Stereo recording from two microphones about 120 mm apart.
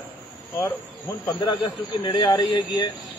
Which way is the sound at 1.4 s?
40° left (ahead or behind).